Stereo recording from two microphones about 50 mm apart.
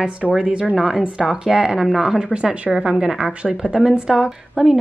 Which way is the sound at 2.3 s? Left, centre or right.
Centre.